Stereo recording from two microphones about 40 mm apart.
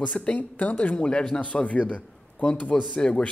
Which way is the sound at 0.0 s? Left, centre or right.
Left.